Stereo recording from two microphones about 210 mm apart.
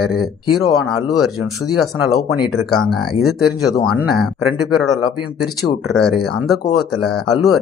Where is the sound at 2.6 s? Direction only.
Centre (ahead or behind).